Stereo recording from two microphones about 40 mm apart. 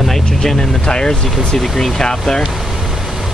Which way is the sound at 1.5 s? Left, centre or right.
Centre.